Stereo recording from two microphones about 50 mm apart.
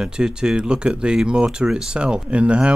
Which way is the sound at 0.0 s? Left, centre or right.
Centre.